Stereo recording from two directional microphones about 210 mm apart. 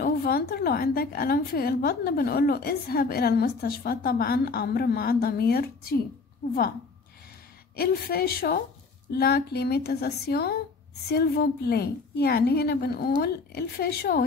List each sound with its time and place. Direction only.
0.0 s a woman's voice: 45° left (ahead or behind)
7.7 s a woman's voice: 45° left (ahead or behind)